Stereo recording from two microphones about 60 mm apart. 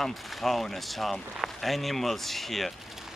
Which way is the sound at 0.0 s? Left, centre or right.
Centre.